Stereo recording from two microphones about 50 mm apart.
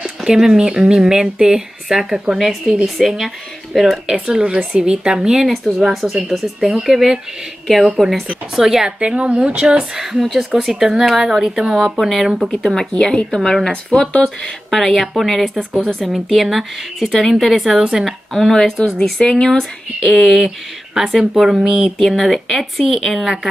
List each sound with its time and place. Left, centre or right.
0.2 s a woman's voice: centre
2.3 s speech: centre
4.1 s a woman's voice: centre
9.0 s speech: right
10.5 s speech: centre
14.4 s a woman's voice: centre
18.3 s speech: centre
20.1 s a woman's voice: centre
22.0 s speech: centre